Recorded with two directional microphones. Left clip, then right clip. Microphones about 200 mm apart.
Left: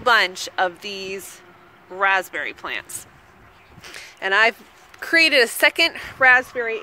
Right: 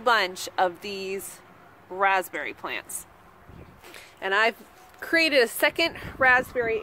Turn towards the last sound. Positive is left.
turn(degrees=-5)  # may be behind; listen again after turning